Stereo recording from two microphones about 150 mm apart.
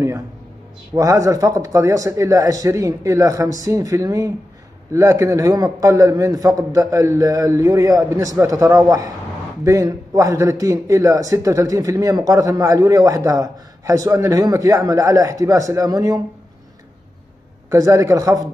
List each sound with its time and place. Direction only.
0.9 s a man's voice: 20° right (ahead or behind)
17.6 s a man's voice: 20° right (ahead or behind)